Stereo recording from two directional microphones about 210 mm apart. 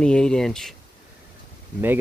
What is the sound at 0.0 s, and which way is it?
Speech, 5° left (ahead or behind).